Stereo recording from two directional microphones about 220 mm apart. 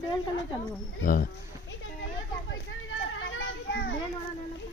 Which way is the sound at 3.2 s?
60° left (ahead or behind).